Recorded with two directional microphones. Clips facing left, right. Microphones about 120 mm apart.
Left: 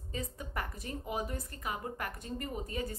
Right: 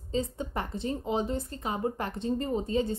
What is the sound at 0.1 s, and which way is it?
A woman's voice, 25° right (ahead or behind).